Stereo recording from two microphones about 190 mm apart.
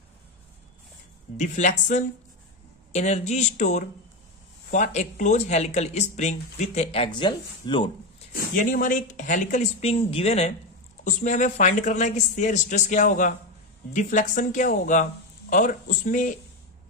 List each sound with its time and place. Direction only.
1.3 s speech: 40° left (ahead or behind)
8.4 s speech: 45° left (ahead or behind)